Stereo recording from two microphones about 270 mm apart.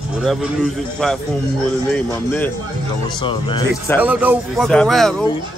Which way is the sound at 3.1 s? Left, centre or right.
Centre.